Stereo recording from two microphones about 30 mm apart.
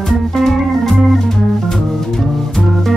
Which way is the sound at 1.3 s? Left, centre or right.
Centre.